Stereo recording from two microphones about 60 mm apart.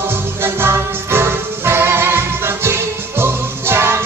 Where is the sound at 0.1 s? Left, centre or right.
Right.